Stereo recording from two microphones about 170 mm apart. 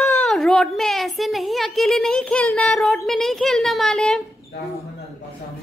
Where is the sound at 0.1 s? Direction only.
Centre (ahead or behind).